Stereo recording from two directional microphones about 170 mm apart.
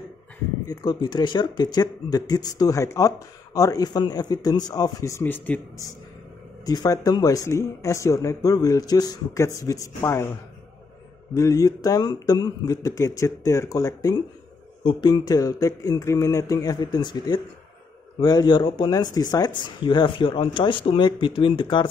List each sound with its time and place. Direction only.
0.7 s speech: 25° left (ahead or behind)
6.6 s speech: 20° left (ahead or behind)
11.3 s speech: 20° left (ahead or behind)